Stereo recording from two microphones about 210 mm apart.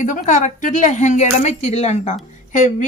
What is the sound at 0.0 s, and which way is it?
Speech, 35° left (ahead or behind).